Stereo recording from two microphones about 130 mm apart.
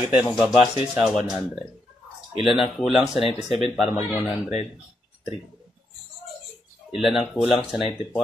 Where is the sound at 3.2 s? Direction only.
50° left (ahead or behind).